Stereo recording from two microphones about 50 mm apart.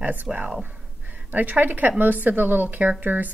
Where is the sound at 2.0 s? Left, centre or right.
Right.